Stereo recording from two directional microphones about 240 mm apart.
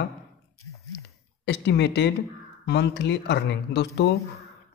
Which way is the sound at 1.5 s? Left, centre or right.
Left.